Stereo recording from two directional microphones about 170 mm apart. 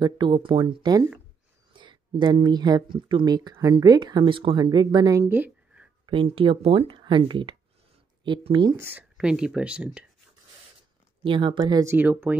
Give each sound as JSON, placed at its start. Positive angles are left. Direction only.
{"t": 0.0, "sound": "speech", "side_deg": -30}
{"t": 6.0, "sound": "speech", "side_deg": -30}
{"t": 8.7, "sound": "speech", "side_deg": -15}
{"t": 11.2, "sound": "speech", "side_deg": -30}